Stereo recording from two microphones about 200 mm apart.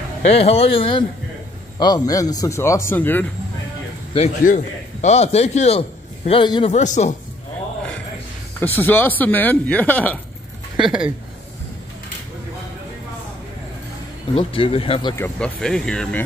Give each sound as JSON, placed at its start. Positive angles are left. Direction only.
{"t": 0.2, "sound": "speech", "side_deg": 30}
{"t": 4.1, "sound": "a man's voice", "side_deg": 35}
{"t": 6.7, "sound": "speech", "side_deg": 35}
{"t": 8.5, "sound": "speech", "side_deg": 10}
{"t": 10.8, "sound": "a woman's voice", "side_deg": -5}
{"t": 14.3, "sound": "speech", "side_deg": 25}
{"t": 15.2, "sound": "speech", "side_deg": 5}